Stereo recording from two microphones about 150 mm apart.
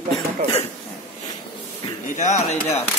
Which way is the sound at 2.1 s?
50° left (ahead or behind).